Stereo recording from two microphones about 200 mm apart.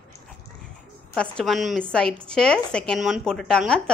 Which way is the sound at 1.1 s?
5° left (ahead or behind).